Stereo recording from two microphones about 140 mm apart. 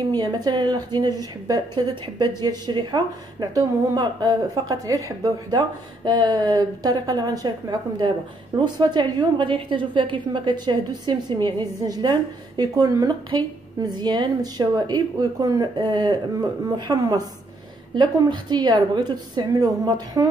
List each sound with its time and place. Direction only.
0.1 s a woman's voice: 30° right (ahead or behind)
8.5 s a woman's voice: 30° right (ahead or behind)